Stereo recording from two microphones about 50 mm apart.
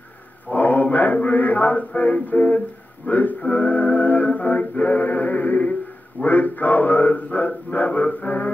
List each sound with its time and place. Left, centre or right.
0.5 s mantra: left
3.1 s music: left